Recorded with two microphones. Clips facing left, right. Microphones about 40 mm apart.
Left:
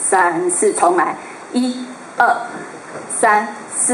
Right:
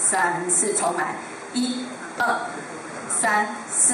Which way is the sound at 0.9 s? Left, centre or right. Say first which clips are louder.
Left 10 dB; left.